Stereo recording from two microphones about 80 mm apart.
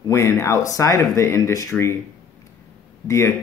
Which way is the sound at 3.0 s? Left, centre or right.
Left.